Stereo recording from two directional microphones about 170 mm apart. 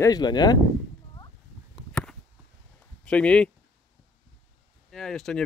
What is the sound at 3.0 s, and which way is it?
Speech, 5° left (ahead or behind).